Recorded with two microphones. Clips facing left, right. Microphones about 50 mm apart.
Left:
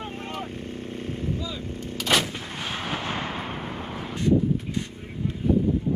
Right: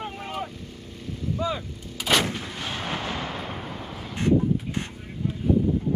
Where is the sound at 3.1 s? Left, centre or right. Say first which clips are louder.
Left 1 dB; left.